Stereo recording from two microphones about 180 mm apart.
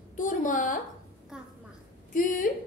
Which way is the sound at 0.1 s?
45° left (ahead or behind).